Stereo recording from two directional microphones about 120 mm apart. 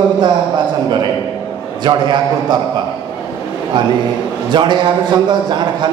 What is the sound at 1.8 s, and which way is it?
Speech, 40° right (ahead or behind).